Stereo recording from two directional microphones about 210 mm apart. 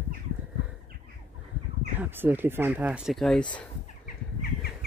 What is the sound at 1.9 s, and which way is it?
Speech, 10° right (ahead or behind).